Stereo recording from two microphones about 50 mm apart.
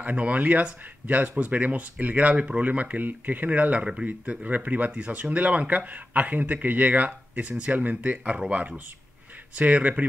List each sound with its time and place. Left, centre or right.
0.0 s speech: right